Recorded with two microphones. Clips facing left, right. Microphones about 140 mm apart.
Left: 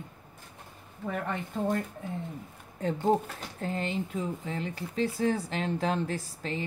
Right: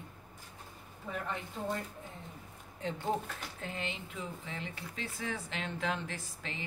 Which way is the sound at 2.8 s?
45° left (ahead or behind).